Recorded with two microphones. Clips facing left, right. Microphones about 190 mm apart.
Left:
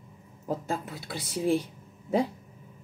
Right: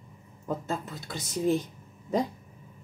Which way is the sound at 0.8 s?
10° left (ahead or behind).